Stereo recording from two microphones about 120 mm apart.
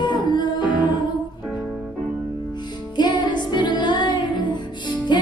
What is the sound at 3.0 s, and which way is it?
Music, 40° left (ahead or behind).